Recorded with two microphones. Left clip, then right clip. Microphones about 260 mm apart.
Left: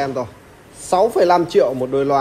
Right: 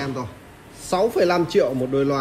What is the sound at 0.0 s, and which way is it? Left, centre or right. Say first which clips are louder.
A man's voice: left 7 dB; centre.